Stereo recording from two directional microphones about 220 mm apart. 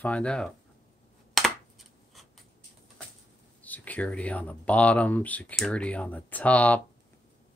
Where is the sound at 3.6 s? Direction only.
5° left (ahead or behind).